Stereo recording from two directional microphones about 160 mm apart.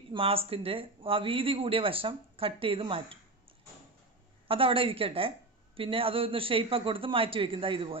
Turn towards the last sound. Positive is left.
turn(degrees=-35)  # may be behind; listen again after turning